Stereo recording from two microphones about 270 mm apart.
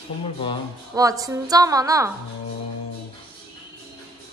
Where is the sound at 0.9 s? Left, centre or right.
Centre.